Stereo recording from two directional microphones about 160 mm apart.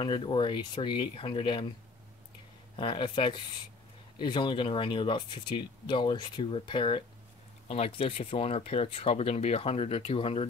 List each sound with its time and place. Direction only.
0.0 s speech: 30° left (ahead or behind)
2.7 s speech: 30° left (ahead or behind)